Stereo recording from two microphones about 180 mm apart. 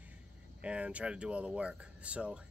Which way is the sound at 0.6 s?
5° right (ahead or behind).